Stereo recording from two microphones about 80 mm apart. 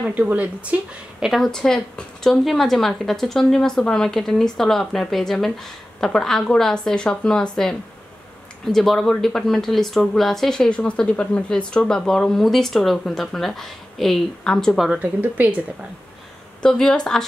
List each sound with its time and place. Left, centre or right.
0.1 s speech: centre
1.2 s speech: centre
15.0 s speech: right
16.6 s speech: centre